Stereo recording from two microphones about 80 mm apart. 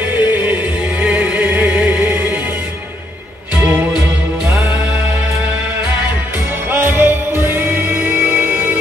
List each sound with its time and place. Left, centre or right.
0.3 s music: right
3.5 s music: centre
6.7 s music: right